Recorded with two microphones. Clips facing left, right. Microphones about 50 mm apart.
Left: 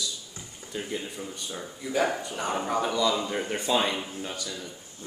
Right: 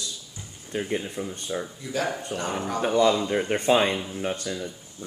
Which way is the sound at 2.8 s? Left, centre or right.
Right.